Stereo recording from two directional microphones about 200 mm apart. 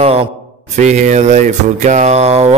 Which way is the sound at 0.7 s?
35° right (ahead or behind).